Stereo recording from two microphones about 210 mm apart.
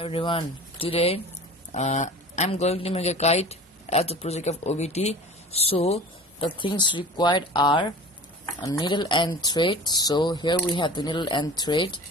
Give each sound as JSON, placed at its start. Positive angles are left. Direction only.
{"t": 0.0, "sound": "speech", "side_deg": 25}